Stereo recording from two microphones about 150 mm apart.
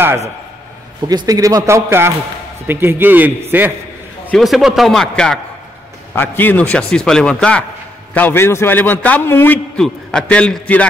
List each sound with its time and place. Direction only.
1.0 s a man's voice: 25° right (ahead or behind)
4.3 s a man's voice: centre (ahead or behind)